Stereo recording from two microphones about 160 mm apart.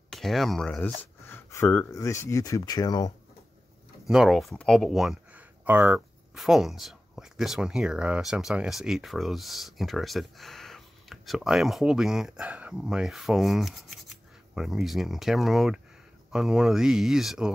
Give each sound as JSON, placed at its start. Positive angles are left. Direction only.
{"t": 0.1, "sound": "speech", "side_deg": 0}
{"t": 4.0, "sound": "speech", "side_deg": 0}